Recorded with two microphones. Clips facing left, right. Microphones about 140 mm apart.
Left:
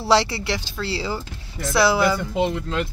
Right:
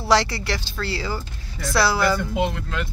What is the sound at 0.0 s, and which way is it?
Speech, 25° left (ahead or behind).